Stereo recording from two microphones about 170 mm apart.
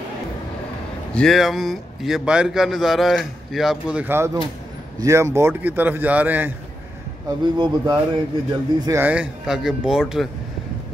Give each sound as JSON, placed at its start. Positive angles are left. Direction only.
{"t": 1.1, "sound": "a man's voice", "side_deg": 0}
{"t": 7.2, "sound": "a man's voice", "side_deg": -25}